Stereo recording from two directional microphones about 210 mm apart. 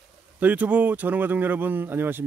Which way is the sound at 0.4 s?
5° right (ahead or behind).